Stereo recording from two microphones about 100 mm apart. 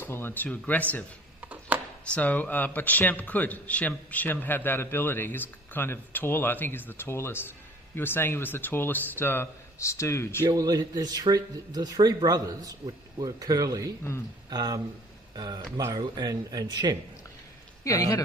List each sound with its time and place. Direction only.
0.0 s speech: 25° left (ahead or behind)
2.0 s a man's voice: 15° left (ahead or behind); by 10.4 s 30° left (ahead or behind)
10.5 s speech: 40° right (ahead or behind)
17.8 s speech: 35° left (ahead or behind)